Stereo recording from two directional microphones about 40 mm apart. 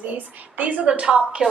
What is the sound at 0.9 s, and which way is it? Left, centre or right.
Speech, right.